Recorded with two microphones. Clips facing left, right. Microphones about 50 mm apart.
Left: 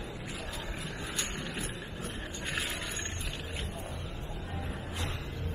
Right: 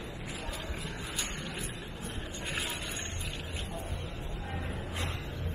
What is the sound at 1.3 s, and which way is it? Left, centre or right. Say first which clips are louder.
Vehicle: left 2 dB; centre.